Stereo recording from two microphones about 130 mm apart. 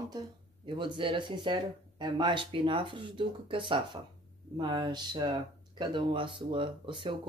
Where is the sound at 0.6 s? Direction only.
40° right (ahead or behind).